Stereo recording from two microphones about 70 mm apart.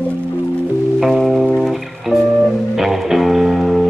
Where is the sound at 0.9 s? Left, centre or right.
Centre.